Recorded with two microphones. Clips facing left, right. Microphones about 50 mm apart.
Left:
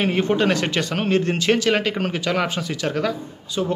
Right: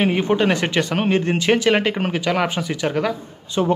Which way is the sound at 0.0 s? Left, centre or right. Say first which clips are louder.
Right 1 dB; centre.